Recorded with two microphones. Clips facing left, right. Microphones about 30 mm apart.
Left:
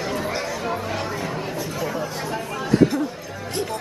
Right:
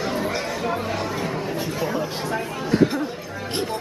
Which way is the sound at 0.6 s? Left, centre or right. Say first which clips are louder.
Right 1 dB; centre.